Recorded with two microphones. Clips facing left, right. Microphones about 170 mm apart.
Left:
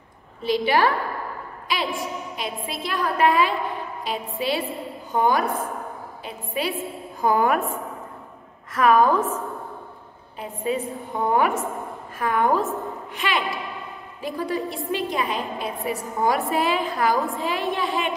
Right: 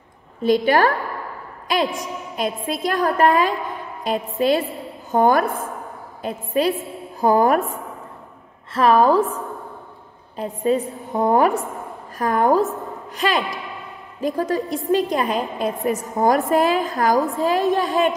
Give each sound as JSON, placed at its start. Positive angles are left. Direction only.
{"t": 0.4, "sound": "a woman's voice", "side_deg": -45}
{"t": 2.0, "sound": "a woman's voice", "side_deg": -45}
{"t": 8.7, "sound": "a woman's voice", "side_deg": -35}